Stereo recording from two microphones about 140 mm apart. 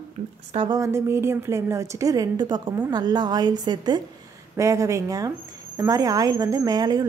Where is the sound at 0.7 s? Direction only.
25° right (ahead or behind).